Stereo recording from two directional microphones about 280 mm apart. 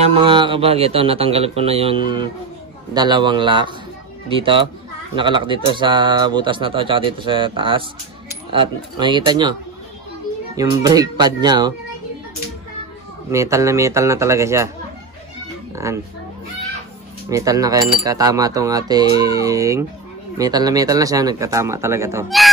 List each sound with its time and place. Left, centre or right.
0.0 s speech: centre
13.3 s speech: centre
15.7 s speech: centre
17.3 s speech: centre